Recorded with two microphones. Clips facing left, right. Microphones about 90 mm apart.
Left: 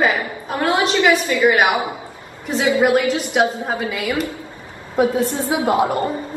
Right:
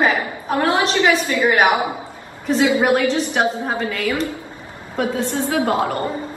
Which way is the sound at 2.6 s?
20° right (ahead or behind).